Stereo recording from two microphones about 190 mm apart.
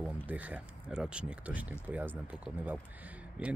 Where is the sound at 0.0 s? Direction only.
10° right (ahead or behind).